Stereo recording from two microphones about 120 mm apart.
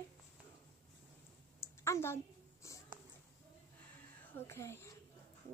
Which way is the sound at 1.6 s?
20° left (ahead or behind).